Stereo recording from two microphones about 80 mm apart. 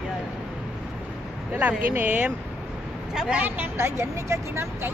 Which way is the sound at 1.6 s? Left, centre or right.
Right.